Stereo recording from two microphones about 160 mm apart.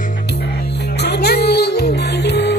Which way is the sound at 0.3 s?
85° left.